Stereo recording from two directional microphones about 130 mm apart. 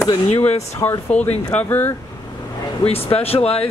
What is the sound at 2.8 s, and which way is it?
Speech, 50° left (ahead or behind).